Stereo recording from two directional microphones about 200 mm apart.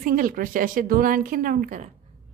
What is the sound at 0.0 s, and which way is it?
Speech, 45° right (ahead or behind).